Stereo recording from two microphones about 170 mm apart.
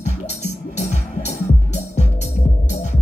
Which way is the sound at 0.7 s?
45° left (ahead or behind).